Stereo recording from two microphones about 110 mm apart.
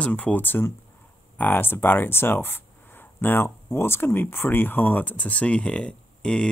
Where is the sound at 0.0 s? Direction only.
10° left (ahead or behind).